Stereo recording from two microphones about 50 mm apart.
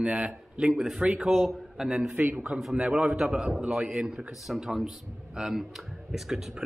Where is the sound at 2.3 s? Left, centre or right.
Centre.